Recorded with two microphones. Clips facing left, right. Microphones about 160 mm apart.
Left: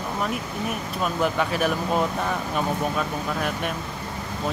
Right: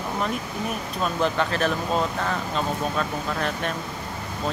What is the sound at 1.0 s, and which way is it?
Speech, 5° left (ahead or behind).